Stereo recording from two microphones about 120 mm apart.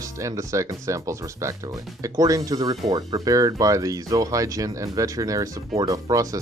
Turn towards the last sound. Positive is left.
turn(degrees=-30)  # may be behind; listen again after turning